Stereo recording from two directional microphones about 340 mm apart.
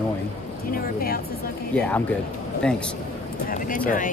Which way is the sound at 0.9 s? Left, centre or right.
Left.